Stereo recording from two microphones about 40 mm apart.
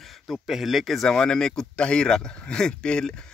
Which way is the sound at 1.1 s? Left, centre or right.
Centre.